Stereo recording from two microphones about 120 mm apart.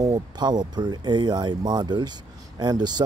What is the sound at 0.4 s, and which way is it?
Speech, 35° right (ahead or behind).